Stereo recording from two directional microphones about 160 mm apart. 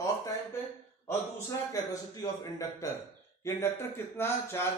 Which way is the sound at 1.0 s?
20° left (ahead or behind).